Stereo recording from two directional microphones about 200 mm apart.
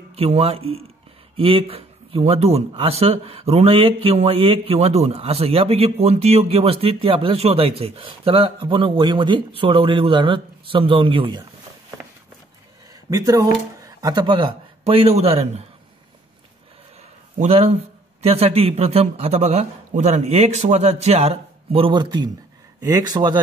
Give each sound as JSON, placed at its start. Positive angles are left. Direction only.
{"t": 0.1, "sound": "speech", "side_deg": -30}
{"t": 13.1, "sound": "speech", "side_deg": -15}
{"t": 17.4, "sound": "speech", "side_deg": -30}